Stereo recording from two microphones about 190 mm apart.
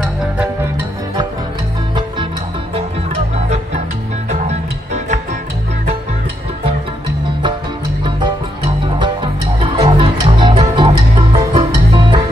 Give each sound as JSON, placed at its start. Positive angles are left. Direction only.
{"t": 0.0, "sound": "music", "side_deg": -5}
{"t": 3.3, "sound": "music", "side_deg": -35}
{"t": 8.0, "sound": "music", "side_deg": -25}